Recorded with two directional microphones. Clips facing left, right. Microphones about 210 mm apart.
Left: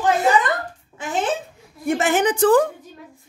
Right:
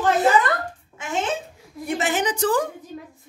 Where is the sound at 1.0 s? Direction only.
35° left (ahead or behind).